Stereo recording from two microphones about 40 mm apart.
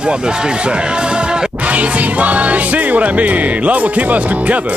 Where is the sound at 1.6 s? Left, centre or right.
Right.